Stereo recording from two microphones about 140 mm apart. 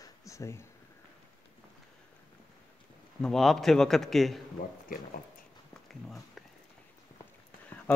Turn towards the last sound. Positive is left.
turn(degrees=0)  # may be behind; listen again after turning